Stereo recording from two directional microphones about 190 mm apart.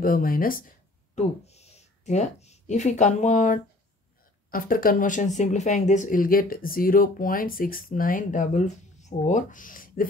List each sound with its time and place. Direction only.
0.0 s speech: 50° left (ahead or behind)